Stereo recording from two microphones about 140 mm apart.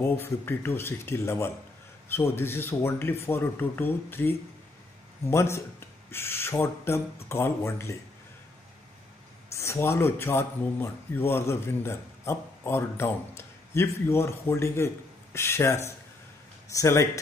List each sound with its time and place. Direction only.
0.0 s speech: 15° left (ahead or behind)
9.5 s speech: 20° left (ahead or behind)